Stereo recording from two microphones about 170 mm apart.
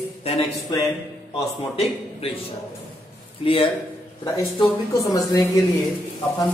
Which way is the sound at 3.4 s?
35° left (ahead or behind).